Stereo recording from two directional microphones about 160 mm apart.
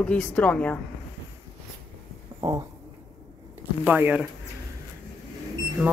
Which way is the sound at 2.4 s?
20° right (ahead or behind).